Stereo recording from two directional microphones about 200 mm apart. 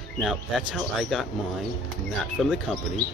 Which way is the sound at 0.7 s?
Centre (ahead or behind).